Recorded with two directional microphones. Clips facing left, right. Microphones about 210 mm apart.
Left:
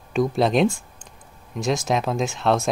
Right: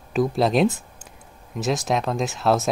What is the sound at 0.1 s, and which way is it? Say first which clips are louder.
Speech: even; centre (ahead or behind).